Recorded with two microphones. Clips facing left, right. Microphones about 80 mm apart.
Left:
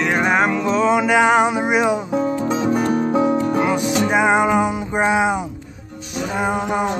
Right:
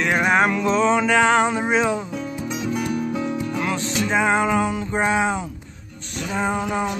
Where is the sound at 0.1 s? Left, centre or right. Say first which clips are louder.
Even; centre.